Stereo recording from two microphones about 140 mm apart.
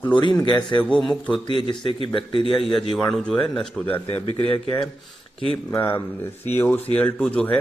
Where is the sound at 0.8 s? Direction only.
5° left (ahead or behind).